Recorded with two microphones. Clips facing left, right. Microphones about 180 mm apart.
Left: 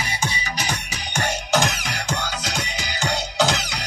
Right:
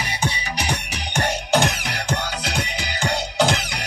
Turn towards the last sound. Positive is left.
turn(degrees=-55)  # may be behind; listen again after turning